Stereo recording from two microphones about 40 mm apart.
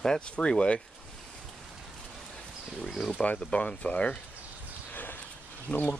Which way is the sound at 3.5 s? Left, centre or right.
Left.